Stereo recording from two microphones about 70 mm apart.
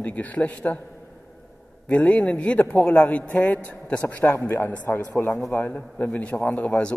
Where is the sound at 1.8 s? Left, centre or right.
Centre.